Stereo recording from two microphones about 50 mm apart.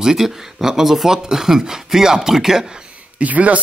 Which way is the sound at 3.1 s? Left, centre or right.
Right.